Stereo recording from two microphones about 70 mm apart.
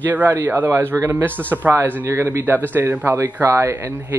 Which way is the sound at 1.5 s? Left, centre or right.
Right.